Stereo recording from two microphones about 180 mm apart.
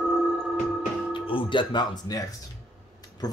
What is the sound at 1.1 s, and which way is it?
Speech, 30° left (ahead or behind).